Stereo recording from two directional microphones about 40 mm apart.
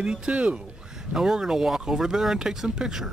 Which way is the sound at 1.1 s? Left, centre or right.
Centre.